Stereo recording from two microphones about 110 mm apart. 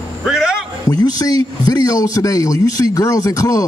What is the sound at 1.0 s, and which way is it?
A man's voice, 35° left (ahead or behind).